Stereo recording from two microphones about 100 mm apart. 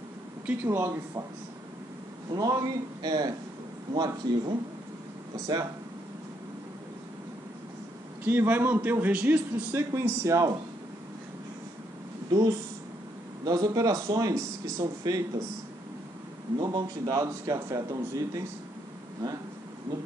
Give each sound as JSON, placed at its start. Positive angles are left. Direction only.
{"t": 0.5, "sound": "a man's voice", "side_deg": -25}
{"t": 2.3, "sound": "speech", "side_deg": -40}
{"t": 8.2, "sound": "a man's voice", "side_deg": -20}
{"t": 12.3, "sound": "speech", "side_deg": -40}
{"t": 16.5, "sound": "speech", "side_deg": -45}